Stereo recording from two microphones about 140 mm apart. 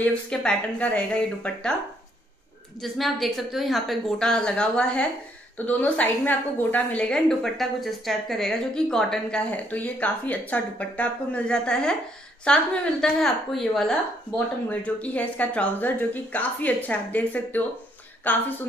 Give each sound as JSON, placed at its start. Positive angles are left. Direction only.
{"t": 0.0, "sound": "a woman's voice", "side_deg": 5}
{"t": 2.8, "sound": "a woman's voice", "side_deg": 0}